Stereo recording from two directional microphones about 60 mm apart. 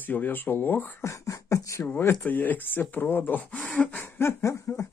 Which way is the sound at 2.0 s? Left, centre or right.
Left.